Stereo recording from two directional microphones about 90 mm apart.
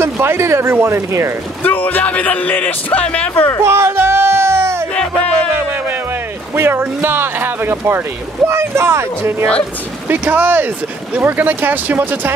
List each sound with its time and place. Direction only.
0.0 s speech: 30° right (ahead or behind)
1.6 s speech: 20° left (ahead or behind)
3.6 s music: 30° right (ahead or behind)
4.9 s music: 10° left (ahead or behind)
6.5 s speech: 25° right (ahead or behind)